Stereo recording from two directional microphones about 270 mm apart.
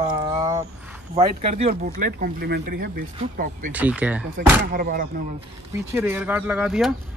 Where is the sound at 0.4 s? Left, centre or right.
Centre.